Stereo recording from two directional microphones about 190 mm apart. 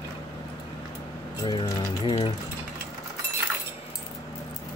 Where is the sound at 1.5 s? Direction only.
20° left (ahead or behind).